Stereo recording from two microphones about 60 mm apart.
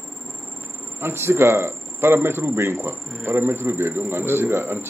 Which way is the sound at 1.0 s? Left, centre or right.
Right.